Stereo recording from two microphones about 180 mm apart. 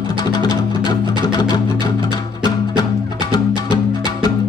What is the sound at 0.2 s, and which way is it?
Music, 20° left (ahead or behind).